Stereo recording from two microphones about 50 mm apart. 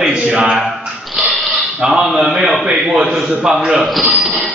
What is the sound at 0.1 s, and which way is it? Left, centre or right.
Speech, centre.